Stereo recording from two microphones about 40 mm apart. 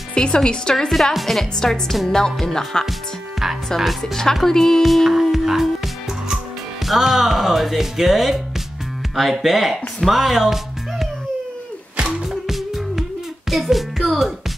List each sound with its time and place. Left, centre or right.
0.1 s a woman's voice: left
0.8 s speech: centre
2.0 s a woman's voice: centre
4.8 s speech: centre
6.9 s speech: centre
12.3 s music: centre